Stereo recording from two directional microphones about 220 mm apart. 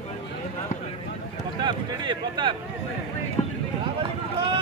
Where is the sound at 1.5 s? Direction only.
20° right (ahead or behind).